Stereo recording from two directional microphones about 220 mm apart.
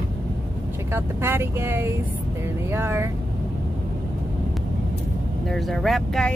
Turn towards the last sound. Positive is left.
turn(degrees=0)  # may be behind; listen again after turning